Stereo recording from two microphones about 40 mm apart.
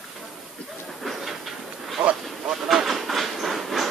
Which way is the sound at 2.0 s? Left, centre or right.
Right.